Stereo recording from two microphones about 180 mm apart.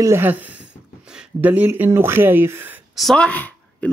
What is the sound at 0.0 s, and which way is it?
Speech, 10° right (ahead or behind).